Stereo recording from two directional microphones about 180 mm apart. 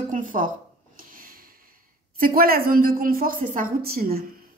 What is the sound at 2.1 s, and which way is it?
Speech, 55° right (ahead or behind).